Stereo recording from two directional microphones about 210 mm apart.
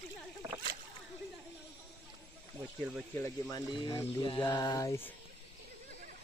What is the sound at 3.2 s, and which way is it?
Speech, 15° left (ahead or behind).